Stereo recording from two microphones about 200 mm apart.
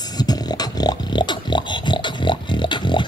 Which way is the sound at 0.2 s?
20° left (ahead or behind).